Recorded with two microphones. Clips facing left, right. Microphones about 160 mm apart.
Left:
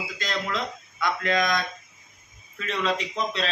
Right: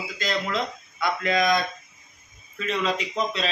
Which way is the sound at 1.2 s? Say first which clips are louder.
Right 3 dB; 5° right (ahead or behind).